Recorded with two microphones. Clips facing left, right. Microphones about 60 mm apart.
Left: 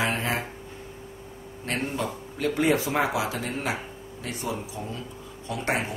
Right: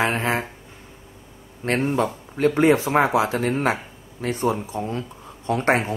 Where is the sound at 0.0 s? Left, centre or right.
Right.